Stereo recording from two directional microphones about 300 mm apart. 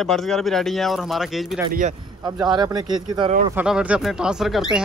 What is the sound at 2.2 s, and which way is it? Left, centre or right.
Speech, centre.